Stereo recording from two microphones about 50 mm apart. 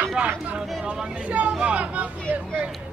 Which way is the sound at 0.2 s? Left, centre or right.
Right.